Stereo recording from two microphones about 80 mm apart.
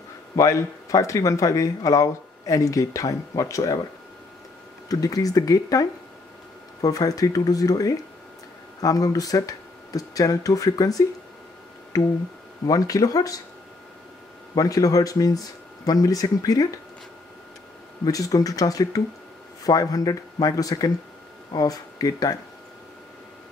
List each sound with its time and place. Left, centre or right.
0.4 s speech: left
4.8 s speech: left
12.6 s speech: left
14.5 s speech: left
18.0 s speech: left